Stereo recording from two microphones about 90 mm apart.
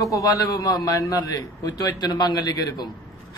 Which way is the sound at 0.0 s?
40° left (ahead or behind).